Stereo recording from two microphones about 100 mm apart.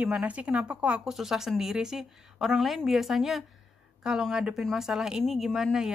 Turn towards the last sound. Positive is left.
turn(degrees=-5)  # may be behind; listen again after turning